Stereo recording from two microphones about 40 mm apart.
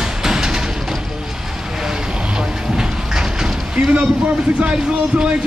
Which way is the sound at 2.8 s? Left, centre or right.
Centre.